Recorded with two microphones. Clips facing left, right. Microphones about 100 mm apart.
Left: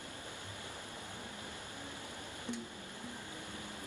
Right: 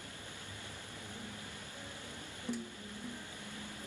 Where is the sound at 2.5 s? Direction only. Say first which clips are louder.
Right 3 dB; 20° left (ahead or behind).